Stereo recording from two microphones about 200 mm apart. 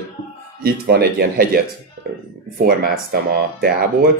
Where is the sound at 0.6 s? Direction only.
50° right (ahead or behind).